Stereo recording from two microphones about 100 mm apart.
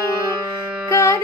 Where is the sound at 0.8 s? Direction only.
35° left (ahead or behind).